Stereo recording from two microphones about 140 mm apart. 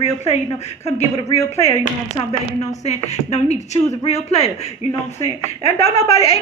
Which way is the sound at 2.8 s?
50° left (ahead or behind).